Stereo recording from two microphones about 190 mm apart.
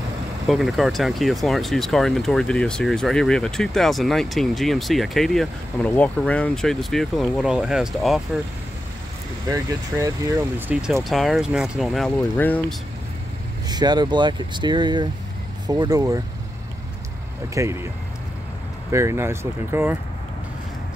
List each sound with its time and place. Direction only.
0.5 s speech: centre (ahead or behind)
9.5 s speech: 15° right (ahead or behind)
10.7 s speech: 5° right (ahead or behind)
13.7 s speech: 20° right (ahead or behind)
17.6 s speech: 15° right (ahead or behind)
18.9 s speech: 15° right (ahead or behind)